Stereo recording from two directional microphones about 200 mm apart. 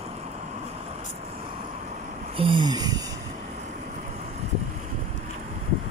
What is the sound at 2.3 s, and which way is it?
Speech, 25° right (ahead or behind).